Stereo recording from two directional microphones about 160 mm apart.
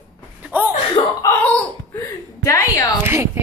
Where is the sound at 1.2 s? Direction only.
10° left (ahead or behind).